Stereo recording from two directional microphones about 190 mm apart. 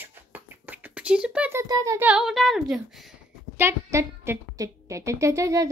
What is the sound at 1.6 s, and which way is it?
Speech, 20° right (ahead or behind).